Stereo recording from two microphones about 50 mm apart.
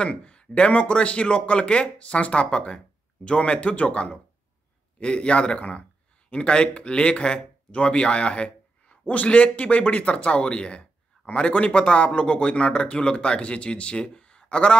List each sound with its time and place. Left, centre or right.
0.0 s a man's voice: left